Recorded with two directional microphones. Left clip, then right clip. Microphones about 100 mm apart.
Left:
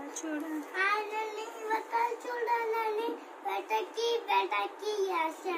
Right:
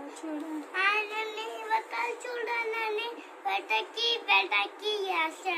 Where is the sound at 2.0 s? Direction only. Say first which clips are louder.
Left 1 dB; centre (ahead or behind).